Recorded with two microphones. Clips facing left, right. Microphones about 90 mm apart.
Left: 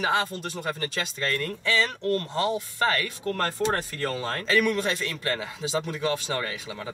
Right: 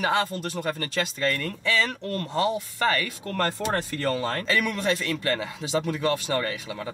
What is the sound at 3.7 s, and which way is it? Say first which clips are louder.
Speech: right 2 dB; centre (ahead or behind).